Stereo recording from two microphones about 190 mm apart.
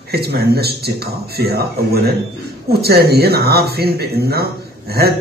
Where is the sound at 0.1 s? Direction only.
55° right (ahead or behind).